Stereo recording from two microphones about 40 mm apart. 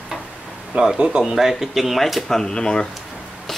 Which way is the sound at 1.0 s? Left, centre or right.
Right.